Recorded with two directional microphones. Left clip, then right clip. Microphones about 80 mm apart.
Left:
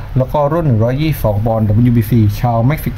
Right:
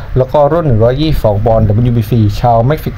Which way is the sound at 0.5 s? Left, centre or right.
Right.